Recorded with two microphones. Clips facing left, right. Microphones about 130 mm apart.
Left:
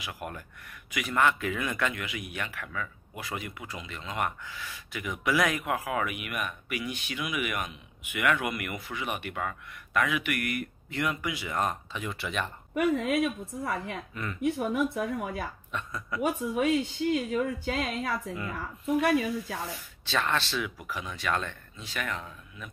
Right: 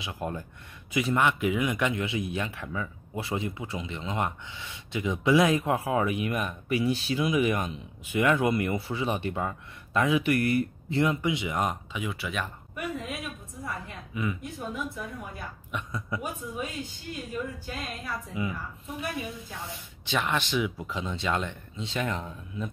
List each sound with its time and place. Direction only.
0.0 s speech: 25° right (ahead or behind)
11.9 s speech: 5° right (ahead or behind)
12.7 s a woman's voice: 75° left (ahead or behind)
14.1 s speech: 10° right (ahead or behind)
14.4 s speech: 75° left (ahead or behind)
15.7 s speech: 20° right (ahead or behind)
16.2 s a woman's voice: 80° left
18.5 s speech: 75° left (ahead or behind)
19.7 s speech: 15° right (ahead or behind)